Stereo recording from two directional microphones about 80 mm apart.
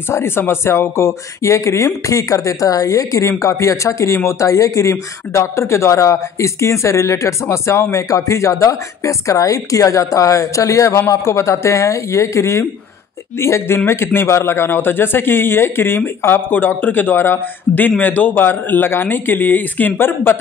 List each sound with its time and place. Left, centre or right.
0.1 s a man's voice: left